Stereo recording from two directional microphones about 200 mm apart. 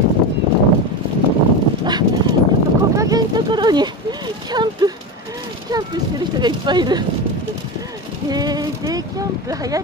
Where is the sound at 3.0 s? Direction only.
20° right (ahead or behind).